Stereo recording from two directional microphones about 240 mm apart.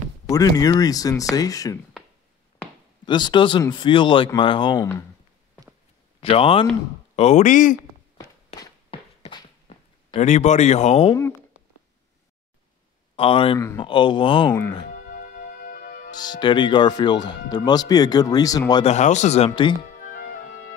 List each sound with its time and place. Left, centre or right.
0.3 s speech: centre
3.1 s speech: centre
6.3 s speech: left
8.5 s a sound: centre
10.1 s speech: left
13.1 s speech: left
15.0 s music: left
16.1 s speech: centre